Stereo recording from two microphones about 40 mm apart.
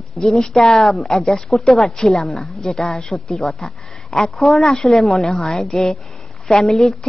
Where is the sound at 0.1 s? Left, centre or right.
Centre.